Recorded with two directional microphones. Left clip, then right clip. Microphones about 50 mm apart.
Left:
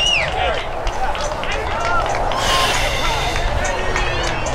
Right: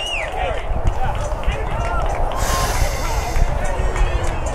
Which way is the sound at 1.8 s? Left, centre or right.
Right.